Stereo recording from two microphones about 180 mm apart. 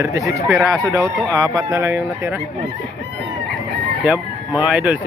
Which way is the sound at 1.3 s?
20° right (ahead or behind).